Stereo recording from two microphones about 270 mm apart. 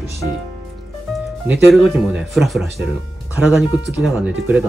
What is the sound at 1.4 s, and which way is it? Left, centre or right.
Speech, centre.